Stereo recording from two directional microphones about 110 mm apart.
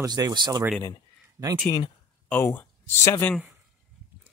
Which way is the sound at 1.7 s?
30° left (ahead or behind).